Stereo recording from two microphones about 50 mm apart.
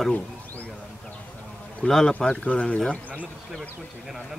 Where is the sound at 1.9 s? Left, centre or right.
Centre.